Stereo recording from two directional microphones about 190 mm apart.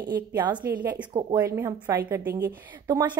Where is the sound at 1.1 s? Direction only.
25° right (ahead or behind).